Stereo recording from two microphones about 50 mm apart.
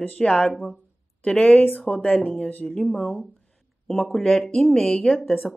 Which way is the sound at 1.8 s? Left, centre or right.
Left.